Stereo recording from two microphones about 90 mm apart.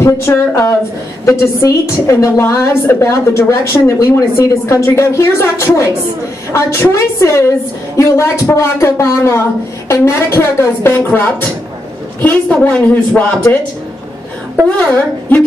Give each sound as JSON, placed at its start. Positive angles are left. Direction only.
{"t": 0.0, "sound": "a woman's voice", "side_deg": 30}
{"t": 14.8, "sound": "speech", "side_deg": 20}